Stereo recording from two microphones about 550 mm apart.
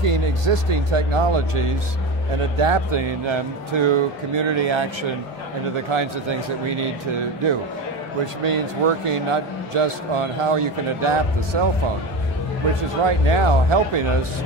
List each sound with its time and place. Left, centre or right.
0.1 s a man's voice: right
5.9 s a man's voice: right
13.0 s a man's voice: right